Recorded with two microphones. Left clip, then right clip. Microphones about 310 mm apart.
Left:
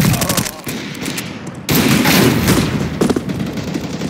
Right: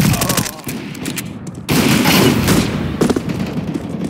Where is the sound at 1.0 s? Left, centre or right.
Centre.